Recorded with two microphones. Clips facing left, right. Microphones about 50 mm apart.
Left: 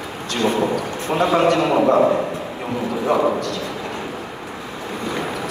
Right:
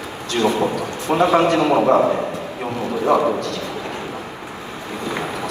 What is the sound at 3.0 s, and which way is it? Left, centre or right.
Speech, centre.